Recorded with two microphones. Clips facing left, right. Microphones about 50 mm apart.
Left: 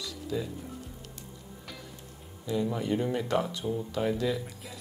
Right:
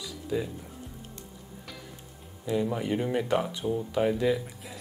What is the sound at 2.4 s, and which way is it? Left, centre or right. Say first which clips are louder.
Speech: right 1 dB; centre.